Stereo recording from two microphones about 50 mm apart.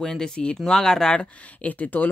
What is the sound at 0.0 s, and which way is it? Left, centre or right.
Speech, centre.